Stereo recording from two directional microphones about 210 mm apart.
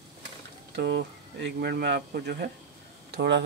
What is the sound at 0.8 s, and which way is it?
Speech, 55° right (ahead or behind).